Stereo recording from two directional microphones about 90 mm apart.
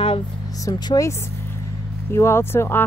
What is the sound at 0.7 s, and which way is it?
Speech, 45° left (ahead or behind).